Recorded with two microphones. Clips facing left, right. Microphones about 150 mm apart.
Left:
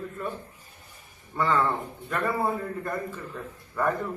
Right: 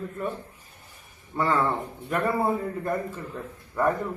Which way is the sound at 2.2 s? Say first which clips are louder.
Right 2 dB; 20° right (ahead or behind).